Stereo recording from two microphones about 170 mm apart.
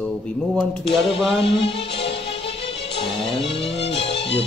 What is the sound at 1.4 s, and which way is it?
Music, 30° left (ahead or behind).